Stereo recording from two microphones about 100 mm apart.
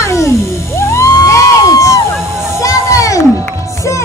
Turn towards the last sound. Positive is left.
turn(degrees=30)  # may be behind; listen again after turning